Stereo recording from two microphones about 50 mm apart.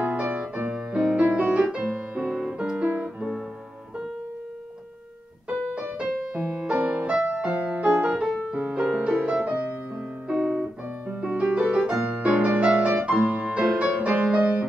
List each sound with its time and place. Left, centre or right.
0.0 s music: right
0.7 s music: centre
1.1 s music: right
1.6 s music: centre
2.2 s music: centre; by 3.3 s right
5.5 s music: right
6.1 s music: centre
6.7 s music: right
7.1 s music: centre
10.2 s piano: centre
11.1 s music: right